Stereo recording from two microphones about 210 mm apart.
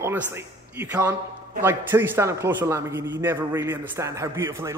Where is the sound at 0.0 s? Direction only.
10° right (ahead or behind).